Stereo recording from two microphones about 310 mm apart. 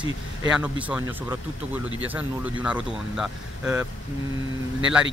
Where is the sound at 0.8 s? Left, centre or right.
Centre.